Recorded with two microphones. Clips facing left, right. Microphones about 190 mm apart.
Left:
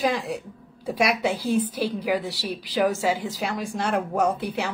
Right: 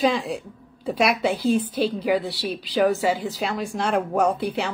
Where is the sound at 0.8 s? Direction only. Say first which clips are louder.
Right 2 dB; 10° left (ahead or behind).